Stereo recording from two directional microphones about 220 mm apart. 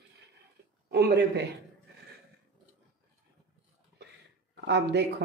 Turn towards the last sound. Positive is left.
turn(degrees=-50)  # may be behind; listen again after turning